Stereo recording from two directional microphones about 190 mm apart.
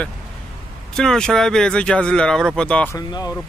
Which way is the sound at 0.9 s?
5° left (ahead or behind).